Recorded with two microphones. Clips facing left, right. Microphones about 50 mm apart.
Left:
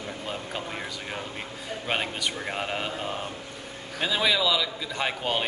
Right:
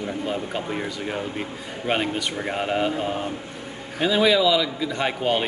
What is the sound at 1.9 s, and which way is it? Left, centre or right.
Speech, centre.